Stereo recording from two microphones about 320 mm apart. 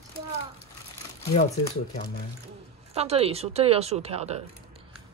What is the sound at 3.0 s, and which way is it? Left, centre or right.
Speech, centre.